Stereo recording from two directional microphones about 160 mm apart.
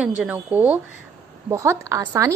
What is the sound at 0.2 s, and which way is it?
A woman's voice, 10° right (ahead or behind).